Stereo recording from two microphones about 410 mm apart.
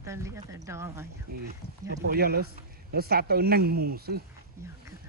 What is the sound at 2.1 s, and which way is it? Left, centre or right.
Speech, right.